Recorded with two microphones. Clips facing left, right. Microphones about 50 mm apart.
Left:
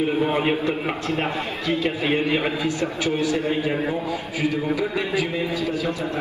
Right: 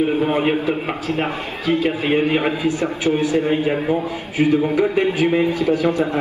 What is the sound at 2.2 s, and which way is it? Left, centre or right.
A man's voice, right.